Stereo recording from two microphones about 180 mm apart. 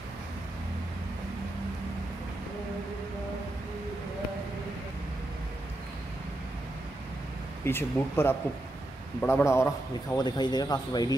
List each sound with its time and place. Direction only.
7.6 s speech: 10° left (ahead or behind)